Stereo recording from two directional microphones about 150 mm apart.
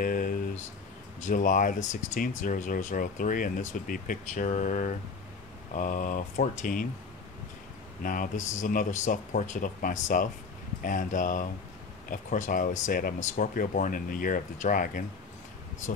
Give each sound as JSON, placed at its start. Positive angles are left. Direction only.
{"t": 0.0, "sound": "a sound", "side_deg": 65}
{"t": 1.2, "sound": "speech", "side_deg": 60}
{"t": 8.0, "sound": "speech", "side_deg": 65}